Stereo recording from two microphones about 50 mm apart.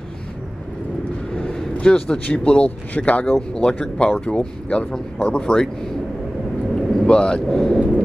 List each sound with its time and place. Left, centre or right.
1.3 s vehicle: centre
1.7 s speech: centre
6.7 s vehicle: left
7.4 s speech: centre